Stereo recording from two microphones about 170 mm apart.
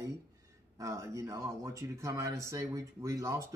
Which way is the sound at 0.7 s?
20° right (ahead or behind).